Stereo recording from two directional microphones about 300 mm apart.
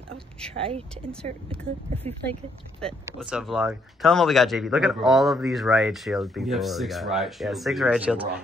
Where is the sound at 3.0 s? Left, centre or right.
Centre.